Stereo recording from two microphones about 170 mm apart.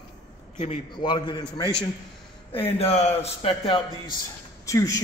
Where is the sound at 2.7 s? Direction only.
35° left (ahead or behind).